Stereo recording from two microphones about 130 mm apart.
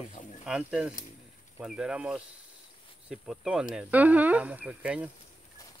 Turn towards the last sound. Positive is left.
turn(degrees=-10)  # may be behind; listen again after turning